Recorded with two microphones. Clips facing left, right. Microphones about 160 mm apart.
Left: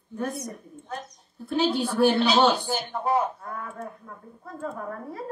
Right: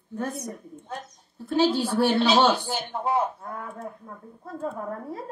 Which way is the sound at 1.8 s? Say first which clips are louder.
Left 1 dB; 25° right (ahead or behind).